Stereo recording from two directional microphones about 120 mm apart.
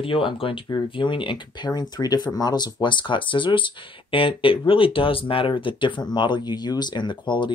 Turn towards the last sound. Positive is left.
turn(degrees=40)  # may be behind; listen again after turning